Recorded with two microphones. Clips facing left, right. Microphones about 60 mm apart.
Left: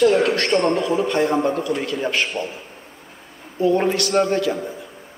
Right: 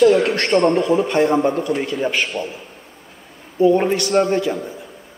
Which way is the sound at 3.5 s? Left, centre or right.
Centre.